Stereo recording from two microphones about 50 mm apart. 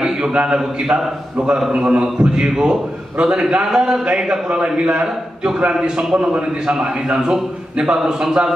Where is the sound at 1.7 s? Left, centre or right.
Right.